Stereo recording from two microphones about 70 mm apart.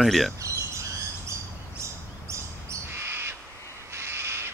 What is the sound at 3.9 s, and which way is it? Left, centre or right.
Owl, right.